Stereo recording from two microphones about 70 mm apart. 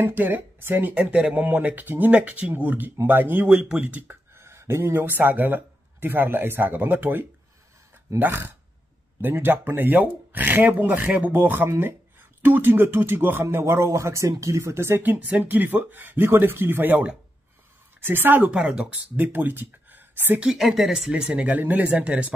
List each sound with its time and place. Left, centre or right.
0.0 s speech: right
3.4 s speech: centre
4.3 s speech: right
18.5 s speech: centre
19.1 s speech: right
20.5 s speech: centre